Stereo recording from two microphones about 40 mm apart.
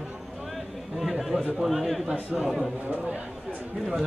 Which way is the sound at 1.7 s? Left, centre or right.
Centre.